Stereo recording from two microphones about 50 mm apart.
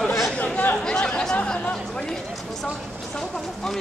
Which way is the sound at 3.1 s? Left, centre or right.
Centre.